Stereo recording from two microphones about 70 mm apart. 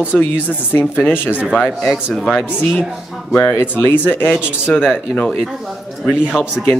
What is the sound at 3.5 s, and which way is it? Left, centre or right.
Speech, left.